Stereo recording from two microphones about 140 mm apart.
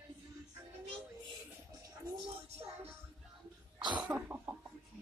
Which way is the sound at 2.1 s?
40° right (ahead or behind).